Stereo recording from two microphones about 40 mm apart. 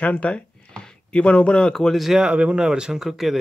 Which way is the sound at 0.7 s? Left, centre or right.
Left.